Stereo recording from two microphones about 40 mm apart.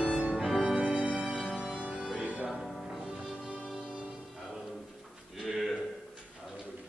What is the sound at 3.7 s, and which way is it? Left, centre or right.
Music, right.